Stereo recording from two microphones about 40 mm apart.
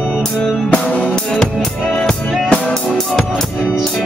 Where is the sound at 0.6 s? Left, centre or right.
Left.